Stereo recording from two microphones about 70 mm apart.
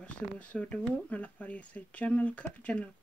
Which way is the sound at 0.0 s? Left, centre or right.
Centre.